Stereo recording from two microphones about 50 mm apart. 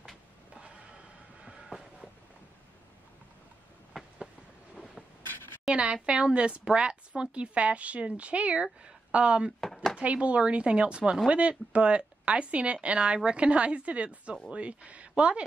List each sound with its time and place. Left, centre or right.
1.4 s vehicle: centre
4.7 s a sound: centre
5.7 s a woman's voice: right